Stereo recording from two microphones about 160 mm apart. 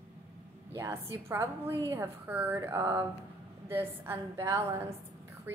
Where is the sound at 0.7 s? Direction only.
15° right (ahead or behind).